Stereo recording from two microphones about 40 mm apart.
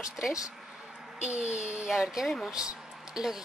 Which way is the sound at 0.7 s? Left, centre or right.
Centre.